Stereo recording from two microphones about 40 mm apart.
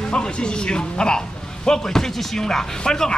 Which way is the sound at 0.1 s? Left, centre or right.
Left.